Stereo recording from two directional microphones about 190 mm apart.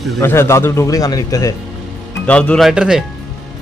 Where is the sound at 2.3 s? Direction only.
5° left (ahead or behind).